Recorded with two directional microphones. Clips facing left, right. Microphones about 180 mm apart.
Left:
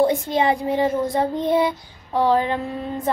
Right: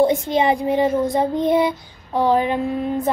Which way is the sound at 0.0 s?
20° right (ahead or behind).